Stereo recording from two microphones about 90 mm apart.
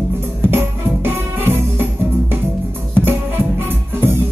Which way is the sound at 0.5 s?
25° right (ahead or behind).